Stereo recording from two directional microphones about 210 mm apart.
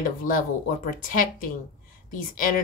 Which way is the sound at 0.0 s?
40° left (ahead or behind).